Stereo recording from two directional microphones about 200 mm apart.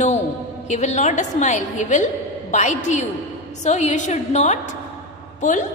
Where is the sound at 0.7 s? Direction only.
35° left (ahead or behind).